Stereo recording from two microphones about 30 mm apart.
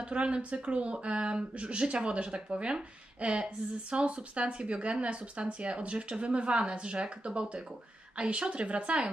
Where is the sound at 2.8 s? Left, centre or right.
Right.